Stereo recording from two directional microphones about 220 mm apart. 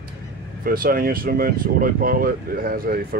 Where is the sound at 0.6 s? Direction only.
40° right (ahead or behind).